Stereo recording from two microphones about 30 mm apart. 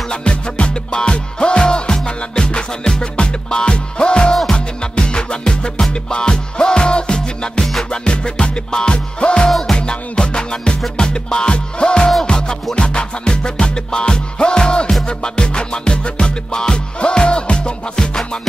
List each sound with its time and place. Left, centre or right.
0.1 s music: left
17.9 s music: centre